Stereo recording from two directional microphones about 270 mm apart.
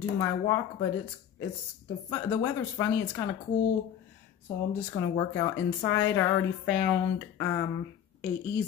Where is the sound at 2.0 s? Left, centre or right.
Centre.